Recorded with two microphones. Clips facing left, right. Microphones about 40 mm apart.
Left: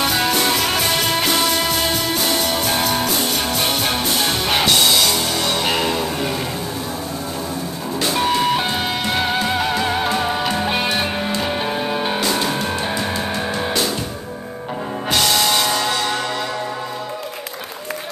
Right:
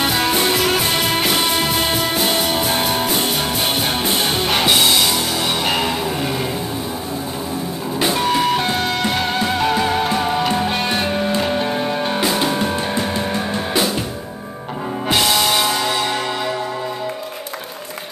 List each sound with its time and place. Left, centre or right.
0.3 s music: centre
8.3 s music: centre
12.2 s music: centre
15.0 s music: centre